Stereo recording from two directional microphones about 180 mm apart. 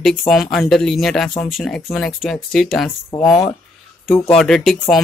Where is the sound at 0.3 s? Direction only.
Centre (ahead or behind).